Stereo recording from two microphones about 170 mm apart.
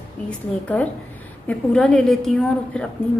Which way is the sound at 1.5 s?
5° left (ahead or behind).